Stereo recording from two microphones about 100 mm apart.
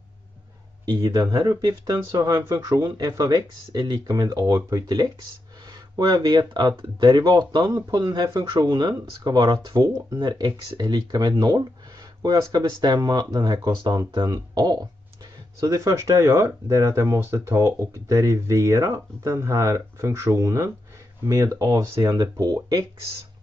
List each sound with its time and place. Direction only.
0.8 s speech: 45° right (ahead or behind)